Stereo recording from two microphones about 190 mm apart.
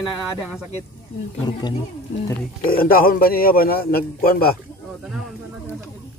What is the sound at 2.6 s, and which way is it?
A man's voice, 50° left (ahead or behind).